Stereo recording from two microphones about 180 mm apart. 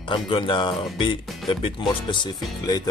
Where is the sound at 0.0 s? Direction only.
25° left (ahead or behind).